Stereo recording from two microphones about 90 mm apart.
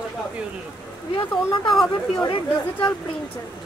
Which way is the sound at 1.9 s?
60° left (ahead or behind).